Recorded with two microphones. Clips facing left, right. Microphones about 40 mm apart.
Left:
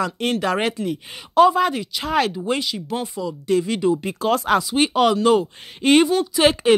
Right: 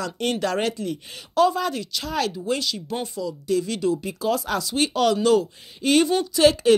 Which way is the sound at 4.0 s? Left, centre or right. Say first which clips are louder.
Left 4 dB; left.